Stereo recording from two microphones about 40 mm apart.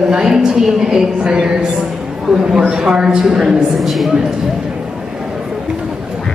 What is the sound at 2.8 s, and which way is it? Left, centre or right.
Speech, centre.